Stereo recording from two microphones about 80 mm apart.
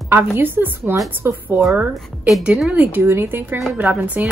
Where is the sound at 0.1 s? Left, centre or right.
Right.